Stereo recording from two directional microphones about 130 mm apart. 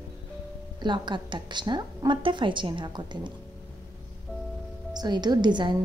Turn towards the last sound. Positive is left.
turn(degrees=-35)  # may be behind; listen again after turning